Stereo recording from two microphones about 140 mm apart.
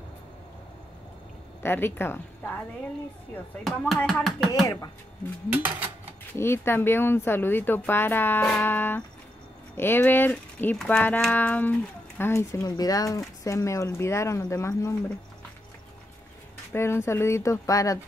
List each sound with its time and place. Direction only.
1.6 s speech: 15° left (ahead or behind)
3.9 s speech: centre (ahead or behind)
4.6 s speech: 25° left (ahead or behind)
5.5 s speech: 15° right (ahead or behind)
6.3 s speech: 15° left (ahead or behind)
16.7 s speech: 20° left (ahead or behind)